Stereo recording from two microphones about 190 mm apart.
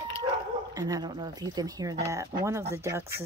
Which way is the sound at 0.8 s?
20° right (ahead or behind).